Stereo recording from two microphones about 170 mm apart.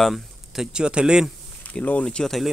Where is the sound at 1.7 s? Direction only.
10° left (ahead or behind).